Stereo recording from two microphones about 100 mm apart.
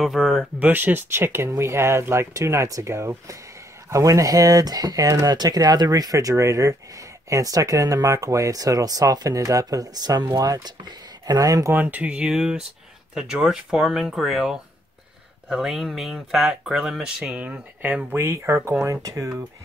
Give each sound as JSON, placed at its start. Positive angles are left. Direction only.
{"t": 0.0, "sound": "speech", "side_deg": 0}
{"t": 0.6, "sound": "speech", "side_deg": -20}
{"t": 11.7, "sound": "speech", "side_deg": -15}
{"t": 18.1, "sound": "speech", "side_deg": -25}